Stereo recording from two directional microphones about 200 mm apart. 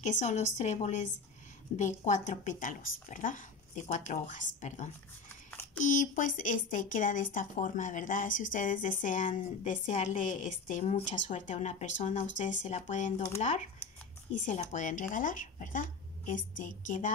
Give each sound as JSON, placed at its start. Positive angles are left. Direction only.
{"t": 0.0, "sound": "speech", "side_deg": 35}
{"t": 14.4, "sound": "speech", "side_deg": 40}